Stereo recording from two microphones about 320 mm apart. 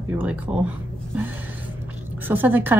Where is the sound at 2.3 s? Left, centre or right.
Centre.